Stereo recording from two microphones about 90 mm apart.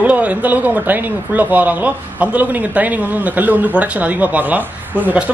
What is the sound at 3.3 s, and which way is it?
Speech, 20° right (ahead or behind).